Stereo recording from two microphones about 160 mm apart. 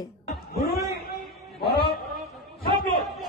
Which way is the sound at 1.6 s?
80° left.